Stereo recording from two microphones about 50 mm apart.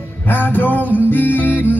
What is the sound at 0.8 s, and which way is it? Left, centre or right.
Music, right.